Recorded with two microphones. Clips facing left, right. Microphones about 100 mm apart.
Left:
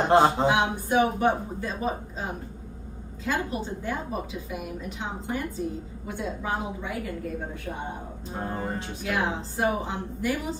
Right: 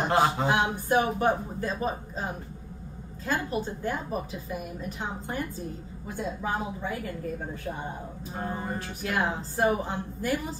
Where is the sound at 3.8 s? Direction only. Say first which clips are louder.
Even; 40° right (ahead or behind).